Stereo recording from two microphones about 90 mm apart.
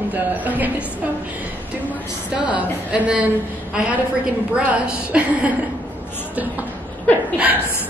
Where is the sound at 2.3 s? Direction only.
15° right (ahead or behind).